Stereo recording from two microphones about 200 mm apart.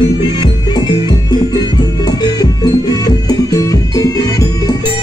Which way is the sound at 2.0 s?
20° left (ahead or behind).